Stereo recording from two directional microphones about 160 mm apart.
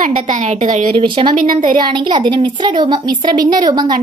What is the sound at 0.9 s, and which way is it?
Speech, 35° right (ahead or behind).